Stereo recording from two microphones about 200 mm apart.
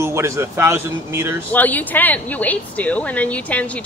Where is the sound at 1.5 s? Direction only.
10° left (ahead or behind).